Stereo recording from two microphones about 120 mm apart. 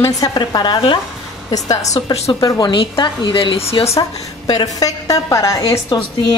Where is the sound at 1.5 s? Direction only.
30° left (ahead or behind); by 3.9 s 55° left (ahead or behind).